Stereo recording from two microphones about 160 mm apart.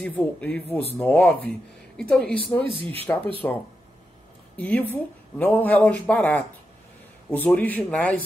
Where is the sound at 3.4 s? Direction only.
15° left (ahead or behind).